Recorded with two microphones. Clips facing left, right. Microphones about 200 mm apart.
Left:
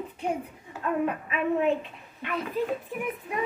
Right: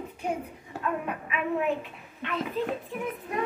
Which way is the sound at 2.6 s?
10° left (ahead or behind).